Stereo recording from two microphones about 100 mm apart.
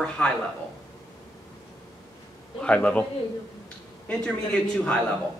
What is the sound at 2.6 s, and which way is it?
Speech, 10° left (ahead or behind).